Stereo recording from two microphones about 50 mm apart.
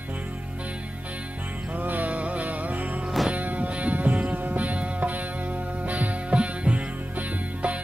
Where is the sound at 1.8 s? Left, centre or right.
Right.